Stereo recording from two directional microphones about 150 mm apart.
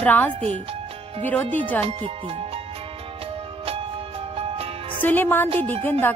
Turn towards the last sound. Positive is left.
turn(degrees=15)  # may be behind; listen again after turning